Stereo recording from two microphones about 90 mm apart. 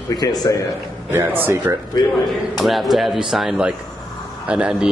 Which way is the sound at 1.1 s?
25° right (ahead or behind).